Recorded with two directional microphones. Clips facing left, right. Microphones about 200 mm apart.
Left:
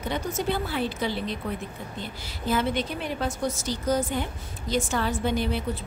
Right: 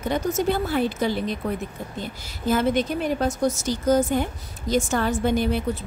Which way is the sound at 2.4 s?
45° right (ahead or behind).